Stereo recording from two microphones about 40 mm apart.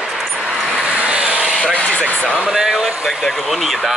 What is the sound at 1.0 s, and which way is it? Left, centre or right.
Vehicle, right.